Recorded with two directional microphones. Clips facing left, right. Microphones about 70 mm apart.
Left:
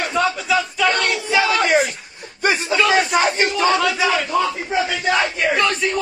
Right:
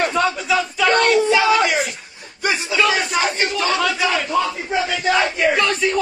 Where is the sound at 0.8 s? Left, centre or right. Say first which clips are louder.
Right 5 dB; right.